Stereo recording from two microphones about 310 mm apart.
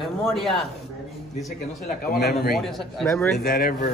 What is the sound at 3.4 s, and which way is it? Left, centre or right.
Speech, left.